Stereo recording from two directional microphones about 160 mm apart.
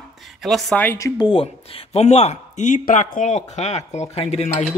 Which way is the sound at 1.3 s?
35° left (ahead or behind).